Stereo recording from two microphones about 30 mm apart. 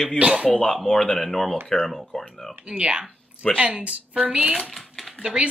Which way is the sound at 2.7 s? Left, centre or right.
Right.